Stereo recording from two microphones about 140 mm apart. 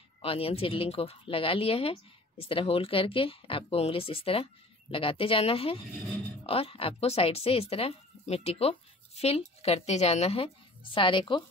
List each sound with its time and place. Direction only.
0.2 s speech: 45° left (ahead or behind)